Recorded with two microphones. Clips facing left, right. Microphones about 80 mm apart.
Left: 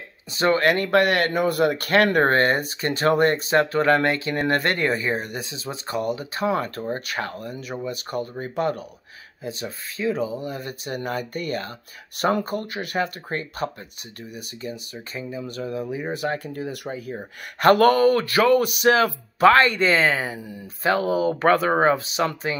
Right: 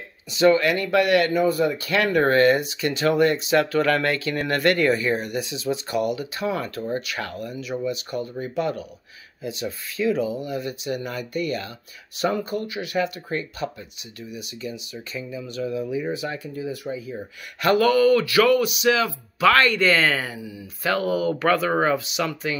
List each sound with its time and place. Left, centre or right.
0.3 s speech: left
16.1 s speech: left
17.1 s speech: left
20.3 s speech: left
20.8 s speech: left